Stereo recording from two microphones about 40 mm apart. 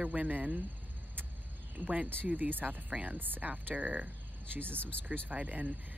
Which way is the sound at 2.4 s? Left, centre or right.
Right.